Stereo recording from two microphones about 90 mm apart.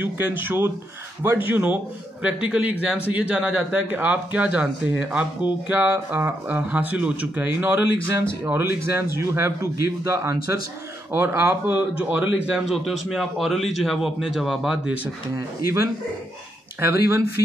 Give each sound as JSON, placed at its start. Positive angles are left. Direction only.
{"t": 0.0, "sound": "a man's voice", "side_deg": -20}
{"t": 12.1, "sound": "speech", "side_deg": -15}
{"t": 15.3, "sound": "speech", "side_deg": -30}